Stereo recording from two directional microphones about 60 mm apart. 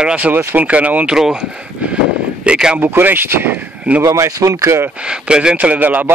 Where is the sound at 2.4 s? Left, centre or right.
Centre.